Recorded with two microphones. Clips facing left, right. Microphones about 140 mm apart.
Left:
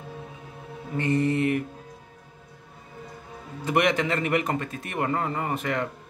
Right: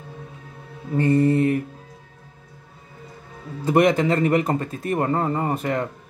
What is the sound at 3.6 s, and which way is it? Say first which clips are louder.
Speech: right 6 dB; 35° right (ahead or behind).